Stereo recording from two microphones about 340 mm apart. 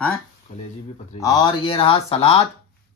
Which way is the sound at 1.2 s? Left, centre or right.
Centre.